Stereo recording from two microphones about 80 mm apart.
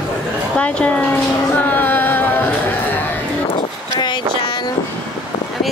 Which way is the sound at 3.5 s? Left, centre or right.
Left.